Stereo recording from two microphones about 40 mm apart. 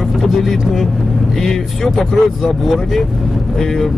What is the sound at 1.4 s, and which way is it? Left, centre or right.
Speech, centre.